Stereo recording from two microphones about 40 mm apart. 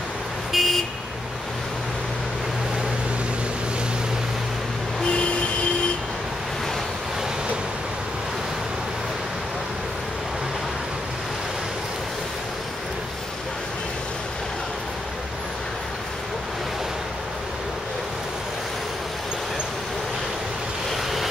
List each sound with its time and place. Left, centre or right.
0.5 s vehicle: centre
5.1 s vehicle: left
20.9 s vehicle: centre